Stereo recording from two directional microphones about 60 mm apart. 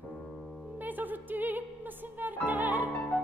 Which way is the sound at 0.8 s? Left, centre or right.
Right.